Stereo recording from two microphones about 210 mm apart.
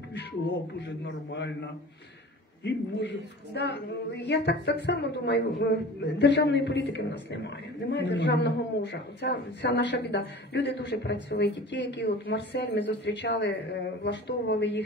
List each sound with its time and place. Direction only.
1.3 s speech: 55° left (ahead or behind)
3.5 s speech: 55° left (ahead or behind)